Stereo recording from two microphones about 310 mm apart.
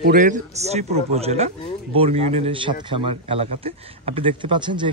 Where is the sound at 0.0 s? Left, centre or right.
Right.